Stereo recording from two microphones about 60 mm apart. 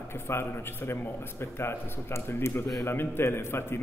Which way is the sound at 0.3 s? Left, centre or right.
Left.